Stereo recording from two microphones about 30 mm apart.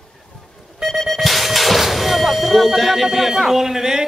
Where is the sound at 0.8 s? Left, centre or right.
Centre.